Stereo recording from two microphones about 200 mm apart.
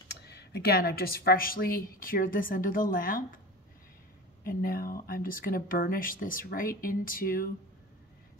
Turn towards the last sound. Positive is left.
turn(degrees=45)  # may be behind; listen again after turning